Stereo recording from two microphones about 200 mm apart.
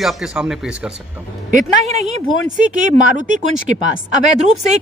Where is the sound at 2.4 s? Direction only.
40° right (ahead or behind).